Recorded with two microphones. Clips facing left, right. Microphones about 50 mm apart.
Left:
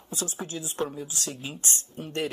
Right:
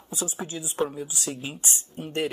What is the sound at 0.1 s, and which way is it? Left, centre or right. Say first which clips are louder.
Speech: right 1 dB; centre.